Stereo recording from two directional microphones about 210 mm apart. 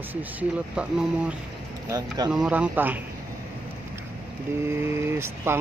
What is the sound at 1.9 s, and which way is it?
Speech, 15° right (ahead or behind).